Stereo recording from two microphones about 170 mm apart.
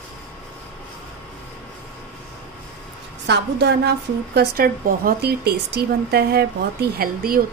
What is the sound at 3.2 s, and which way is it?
A woman's voice, 90° right.